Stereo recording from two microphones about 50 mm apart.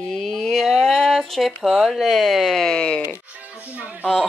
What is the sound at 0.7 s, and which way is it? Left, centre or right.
Speech, centre.